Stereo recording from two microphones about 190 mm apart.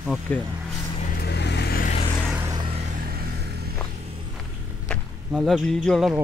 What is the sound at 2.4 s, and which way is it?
Vehicle, 20° right (ahead or behind).